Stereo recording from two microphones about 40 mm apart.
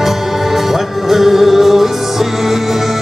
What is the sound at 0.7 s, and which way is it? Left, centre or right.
Music, centre.